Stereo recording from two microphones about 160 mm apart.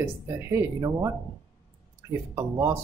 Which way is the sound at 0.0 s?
15° right (ahead or behind).